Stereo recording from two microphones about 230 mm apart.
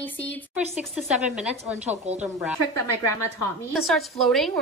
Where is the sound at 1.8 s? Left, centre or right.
Right.